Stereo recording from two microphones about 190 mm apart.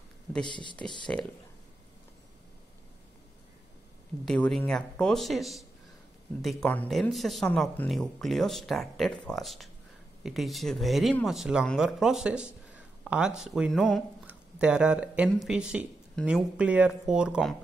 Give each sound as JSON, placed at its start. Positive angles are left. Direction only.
{"t": 0.5, "sound": "speech", "side_deg": 25}
{"t": 1.1, "sound": "speech", "side_deg": 5}
{"t": 4.3, "sound": "speech", "side_deg": 5}